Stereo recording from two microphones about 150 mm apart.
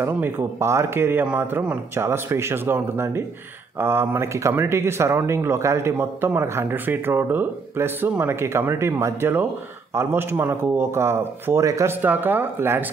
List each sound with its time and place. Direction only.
0.0 s speech: 15° right (ahead or behind)